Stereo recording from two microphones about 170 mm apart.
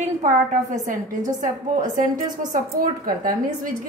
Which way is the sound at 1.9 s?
55° right (ahead or behind).